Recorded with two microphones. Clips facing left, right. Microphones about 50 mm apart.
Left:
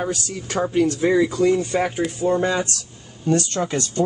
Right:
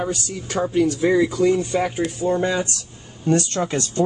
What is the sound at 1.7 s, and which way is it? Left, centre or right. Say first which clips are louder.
Speech: even; centre.